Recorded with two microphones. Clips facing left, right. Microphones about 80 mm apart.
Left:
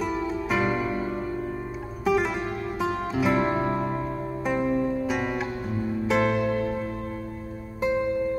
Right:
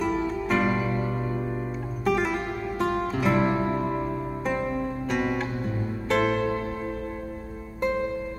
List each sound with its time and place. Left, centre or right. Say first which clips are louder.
0.0 s music: right 1 dB; centre
2.0 s music: left 1 dB; centre
3.6 s music: even; centre
4.5 s music: left 4 dB; centre
7.8 s music: left 1 dB; centre